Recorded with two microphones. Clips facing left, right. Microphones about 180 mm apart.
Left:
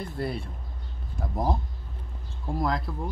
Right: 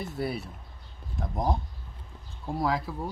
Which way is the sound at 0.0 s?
5° right (ahead or behind).